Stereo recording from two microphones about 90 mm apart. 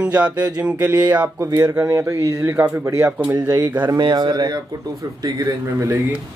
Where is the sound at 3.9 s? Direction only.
50° right (ahead or behind).